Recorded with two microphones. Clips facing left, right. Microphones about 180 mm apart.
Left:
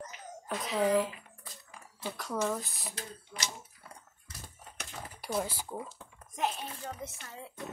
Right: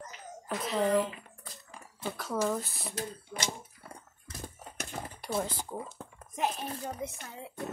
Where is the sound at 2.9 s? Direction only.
50° right (ahead or behind).